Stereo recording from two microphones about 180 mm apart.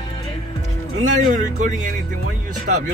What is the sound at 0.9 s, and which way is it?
Speech, 40° right (ahead or behind).